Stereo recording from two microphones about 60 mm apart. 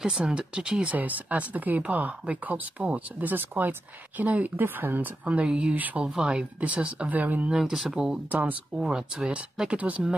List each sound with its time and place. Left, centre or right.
0.0 s speech: centre
0.9 s speech: right
5.2 s speech: right
5.8 s speech: right
6.0 s speech: centre
7.5 s speech: centre
8.3 s speech: right
8.7 s speech: centre